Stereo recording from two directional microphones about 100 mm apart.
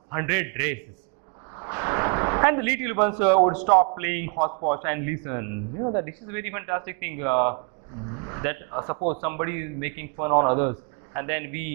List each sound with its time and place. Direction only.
0.1 s a man's voice: 20° right (ahead or behind)